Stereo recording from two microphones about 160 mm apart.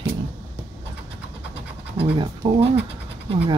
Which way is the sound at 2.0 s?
35° right (ahead or behind).